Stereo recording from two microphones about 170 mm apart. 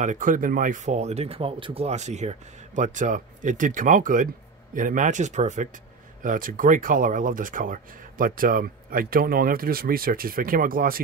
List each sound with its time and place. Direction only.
0.0 s speech: 50° right (ahead or behind)